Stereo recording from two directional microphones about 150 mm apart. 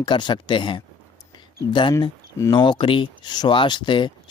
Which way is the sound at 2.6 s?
30° left (ahead or behind).